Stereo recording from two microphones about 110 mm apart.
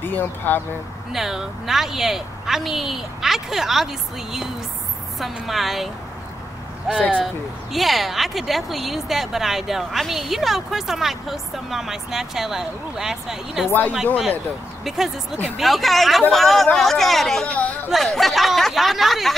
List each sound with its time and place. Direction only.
0.0 s speech: 15° left (ahead or behind)
1.1 s speech: 5° right (ahead or behind)
6.9 s speech: 10° right (ahead or behind)
13.7 s speech: 15° left (ahead or behind)
14.9 s speech: 5° right (ahead or behind); by 17.7 s 10° left (ahead or behind)
17.8 s speech: centre (ahead or behind)